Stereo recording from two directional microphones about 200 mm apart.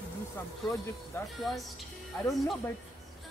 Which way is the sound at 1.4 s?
Centre (ahead or behind).